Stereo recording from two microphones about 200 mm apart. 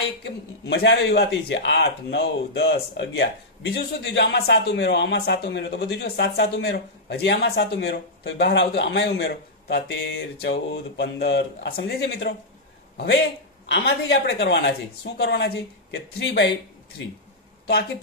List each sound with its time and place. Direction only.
0.2 s a man's voice: 55° left (ahead or behind)